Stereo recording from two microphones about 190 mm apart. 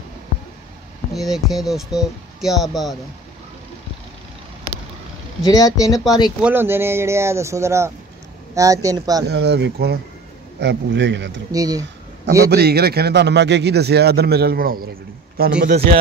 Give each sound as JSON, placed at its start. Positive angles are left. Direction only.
{"t": 1.1, "sound": "speech", "side_deg": 0}
{"t": 5.4, "sound": "speech", "side_deg": 20}
{"t": 6.4, "sound": "speech", "side_deg": -10}
{"t": 9.3, "sound": "a man's voice", "side_deg": -60}
{"t": 11.5, "sound": "speech", "side_deg": -20}
{"t": 12.4, "sound": "speech", "side_deg": -55}